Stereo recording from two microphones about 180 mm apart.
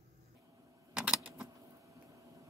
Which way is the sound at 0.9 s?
5° right (ahead or behind).